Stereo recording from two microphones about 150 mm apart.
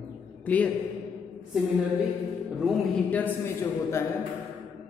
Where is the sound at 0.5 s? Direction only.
10° left (ahead or behind).